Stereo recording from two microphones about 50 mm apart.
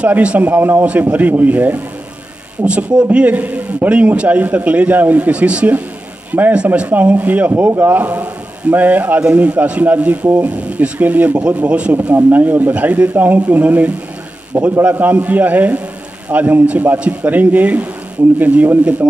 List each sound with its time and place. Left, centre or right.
0.0 s a man's voice: right
0.5 s a man's voice: right
2.6 s a man's voice: right
12.1 s a man's voice: right
12.7 s a man's voice: right